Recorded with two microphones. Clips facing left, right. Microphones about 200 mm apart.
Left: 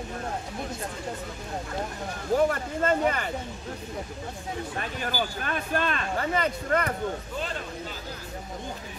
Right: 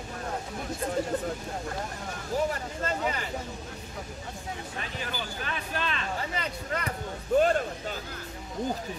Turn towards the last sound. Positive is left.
turn(degrees=-50)  # may be behind; listen again after turning